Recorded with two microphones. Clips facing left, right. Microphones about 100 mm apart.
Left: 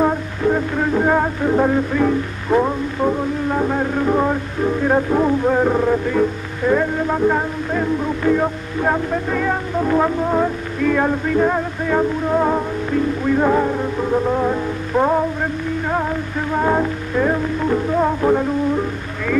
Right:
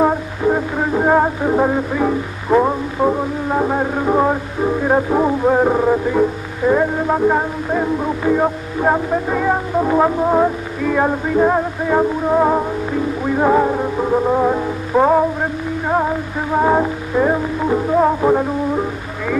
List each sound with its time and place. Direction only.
0.0 s music: 15° right (ahead or behind)